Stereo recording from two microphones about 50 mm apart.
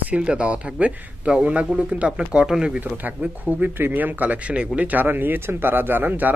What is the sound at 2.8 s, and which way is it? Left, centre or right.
Speech, right.